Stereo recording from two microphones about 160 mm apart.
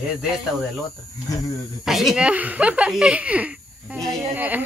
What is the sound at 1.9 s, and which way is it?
A woman's voice, centre (ahead or behind).